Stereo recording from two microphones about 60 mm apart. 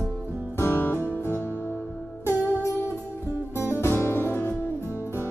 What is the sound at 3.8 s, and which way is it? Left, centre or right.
Music, left.